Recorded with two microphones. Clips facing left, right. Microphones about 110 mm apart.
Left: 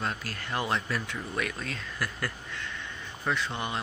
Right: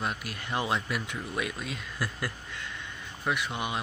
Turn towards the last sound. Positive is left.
turn(degrees=-15)  # may be behind; listen again after turning